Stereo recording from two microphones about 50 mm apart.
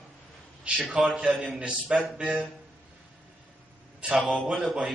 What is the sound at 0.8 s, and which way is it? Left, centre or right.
Speech, centre.